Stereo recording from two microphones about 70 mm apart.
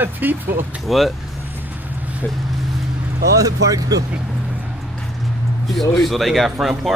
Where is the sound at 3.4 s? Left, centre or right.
Right.